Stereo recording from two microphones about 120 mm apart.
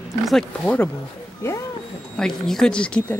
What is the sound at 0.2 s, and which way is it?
Speech, centre (ahead or behind).